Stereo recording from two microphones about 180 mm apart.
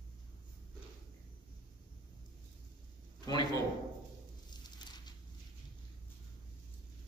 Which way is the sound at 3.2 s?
20° left (ahead or behind).